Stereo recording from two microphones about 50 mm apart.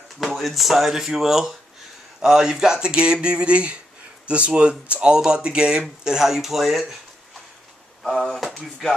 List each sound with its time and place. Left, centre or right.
0.2 s speech: centre
8.0 s speech: centre